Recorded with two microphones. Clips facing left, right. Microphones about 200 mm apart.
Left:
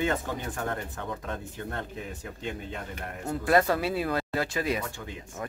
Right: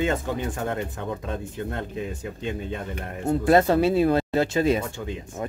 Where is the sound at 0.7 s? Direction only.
20° right (ahead or behind).